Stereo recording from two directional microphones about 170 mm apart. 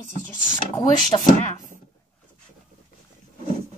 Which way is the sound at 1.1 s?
30° left (ahead or behind).